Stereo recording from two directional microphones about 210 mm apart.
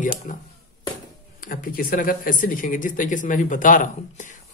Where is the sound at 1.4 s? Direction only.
40° left (ahead or behind).